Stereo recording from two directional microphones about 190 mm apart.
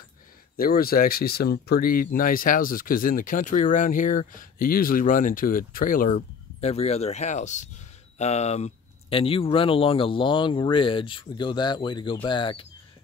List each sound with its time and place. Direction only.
0.6 s speech: 50° left (ahead or behind); by 12.6 s 25° left (ahead or behind)